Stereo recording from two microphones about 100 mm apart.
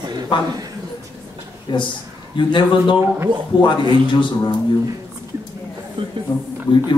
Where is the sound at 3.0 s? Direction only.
20° right (ahead or behind).